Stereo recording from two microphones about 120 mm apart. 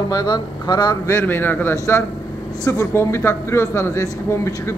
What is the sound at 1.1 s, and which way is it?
Speech, 15° left (ahead or behind).